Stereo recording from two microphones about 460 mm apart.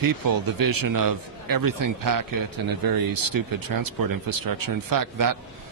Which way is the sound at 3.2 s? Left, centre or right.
Right.